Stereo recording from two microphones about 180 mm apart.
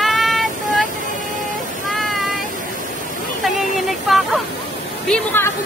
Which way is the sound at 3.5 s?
Centre (ahead or behind).